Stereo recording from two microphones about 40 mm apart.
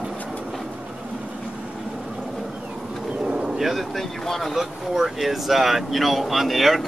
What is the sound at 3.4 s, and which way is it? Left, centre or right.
Bird, centre.